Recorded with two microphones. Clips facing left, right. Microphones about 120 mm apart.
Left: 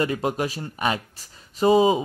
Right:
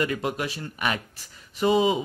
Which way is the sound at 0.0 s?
35° left (ahead or behind).